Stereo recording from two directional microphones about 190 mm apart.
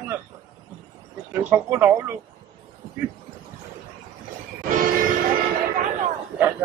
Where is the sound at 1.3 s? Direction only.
10° right (ahead or behind).